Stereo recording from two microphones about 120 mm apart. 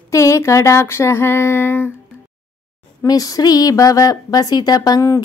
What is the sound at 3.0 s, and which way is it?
A woman's voice, 30° left (ahead or behind).